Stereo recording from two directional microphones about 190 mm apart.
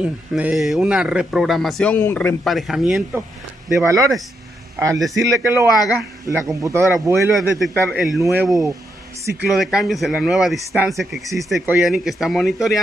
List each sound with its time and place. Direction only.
0.0 s speech: 5° right (ahead or behind); by 2.3 s 10° left (ahead or behind)
2.4 s speech: centre (ahead or behind)
7.3 s speech: centre (ahead or behind)
9.5 s speech: centre (ahead or behind)